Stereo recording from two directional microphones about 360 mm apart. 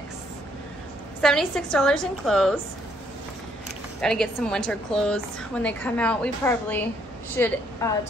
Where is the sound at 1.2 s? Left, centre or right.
Centre.